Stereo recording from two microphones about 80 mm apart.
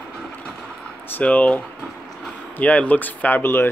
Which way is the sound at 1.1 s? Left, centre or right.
Centre.